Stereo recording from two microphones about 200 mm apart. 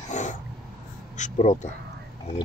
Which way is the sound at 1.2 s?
35° left (ahead or behind).